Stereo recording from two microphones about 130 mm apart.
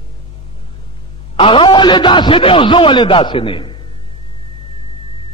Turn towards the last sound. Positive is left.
turn(degrees=40)  # may be behind; listen again after turning